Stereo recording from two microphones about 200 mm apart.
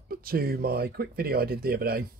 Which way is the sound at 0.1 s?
50° right (ahead or behind).